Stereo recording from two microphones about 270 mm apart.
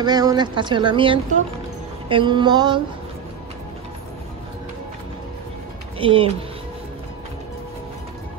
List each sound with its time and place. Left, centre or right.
0.0 s speech: centre
5.9 s speech: centre